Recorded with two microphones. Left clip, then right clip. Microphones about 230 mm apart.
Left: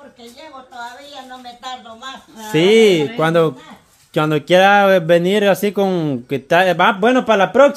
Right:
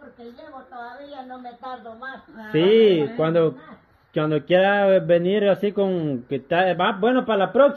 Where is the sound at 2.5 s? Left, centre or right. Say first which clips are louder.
Left 5 dB; left.